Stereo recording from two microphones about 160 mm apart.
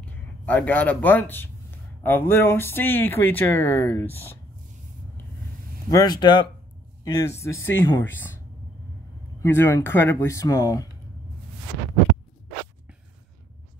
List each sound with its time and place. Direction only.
0.0 s speech: 10° left (ahead or behind)
5.9 s speech: 25° left (ahead or behind)
9.4 s speech: 15° left (ahead or behind)